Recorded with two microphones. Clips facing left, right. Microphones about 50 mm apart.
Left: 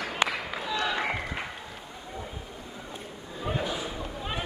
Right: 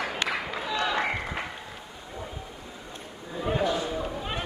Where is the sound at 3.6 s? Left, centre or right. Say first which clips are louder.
Right 8 dB; centre.